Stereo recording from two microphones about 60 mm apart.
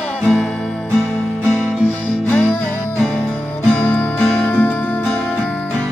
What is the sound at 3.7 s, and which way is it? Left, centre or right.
Music, left.